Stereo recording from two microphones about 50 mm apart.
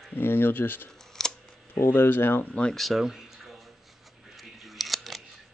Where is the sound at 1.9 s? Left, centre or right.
Left.